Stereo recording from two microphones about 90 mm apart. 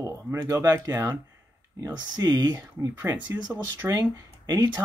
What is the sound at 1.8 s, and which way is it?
Speech, 45° right (ahead or behind).